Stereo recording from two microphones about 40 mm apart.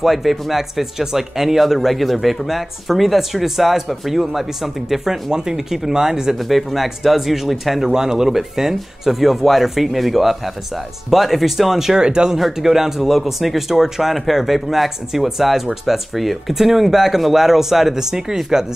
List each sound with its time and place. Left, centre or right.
0.0 s speech: centre
6.5 s speech: centre
7.9 s speech: centre
12.0 s speech: right
12.4 s speech: centre